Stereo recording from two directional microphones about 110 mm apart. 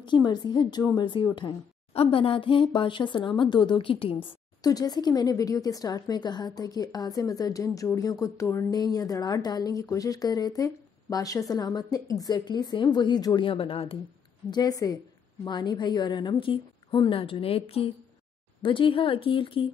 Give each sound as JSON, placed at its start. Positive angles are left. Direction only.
{"t": 0.0, "sound": "a woman's voice", "side_deg": 40}
{"t": 2.0, "sound": "a woman's voice", "side_deg": 55}
{"t": 4.6, "sound": "speech", "side_deg": 35}
{"t": 14.5, "sound": "a woman's voice", "side_deg": 35}